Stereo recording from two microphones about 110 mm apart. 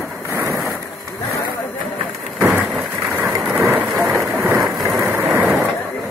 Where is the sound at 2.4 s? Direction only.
20° right (ahead or behind).